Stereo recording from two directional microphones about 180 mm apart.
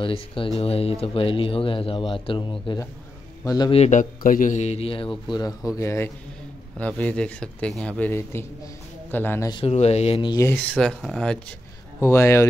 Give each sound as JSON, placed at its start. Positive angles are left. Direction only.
{"t": 0.0, "sound": "speech", "side_deg": 30}
{"t": 3.8, "sound": "a man's voice", "side_deg": 45}
{"t": 9.5, "sound": "a man's voice", "side_deg": 30}
{"t": 10.3, "sound": "speech", "side_deg": 15}
{"t": 12.0, "sound": "speech", "side_deg": 15}